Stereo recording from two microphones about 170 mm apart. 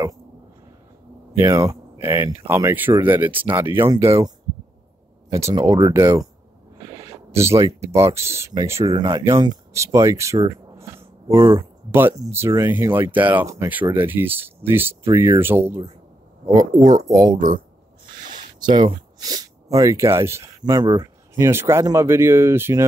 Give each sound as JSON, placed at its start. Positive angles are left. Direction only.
{"t": 1.3, "sound": "speech", "side_deg": -20}
{"t": 5.3, "sound": "speech", "side_deg": -20}
{"t": 17.1, "sound": "speech", "side_deg": -20}
{"t": 18.6, "sound": "speech", "side_deg": -25}